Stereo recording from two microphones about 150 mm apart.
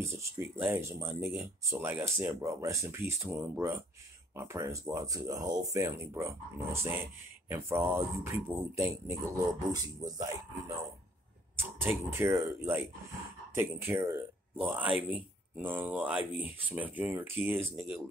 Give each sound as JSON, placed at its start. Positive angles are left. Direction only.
{"t": 0.0, "sound": "speech", "side_deg": -20}
{"t": 11.5, "sound": "speech", "side_deg": -15}